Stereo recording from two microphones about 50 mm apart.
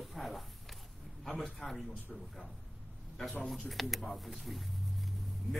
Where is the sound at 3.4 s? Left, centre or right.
Centre.